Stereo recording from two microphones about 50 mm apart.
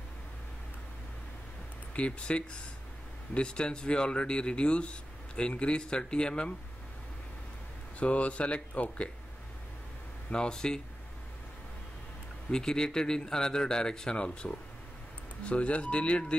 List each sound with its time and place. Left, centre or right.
2.0 s speech: left
8.0 s speech: left
10.3 s speech: centre
12.4 s speech: centre